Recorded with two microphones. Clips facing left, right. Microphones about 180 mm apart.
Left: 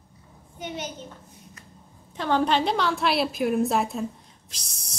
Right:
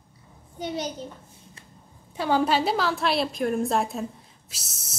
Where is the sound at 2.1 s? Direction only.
10° right (ahead or behind).